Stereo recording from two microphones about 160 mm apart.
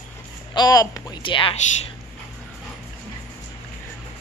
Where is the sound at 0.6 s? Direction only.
20° left (ahead or behind).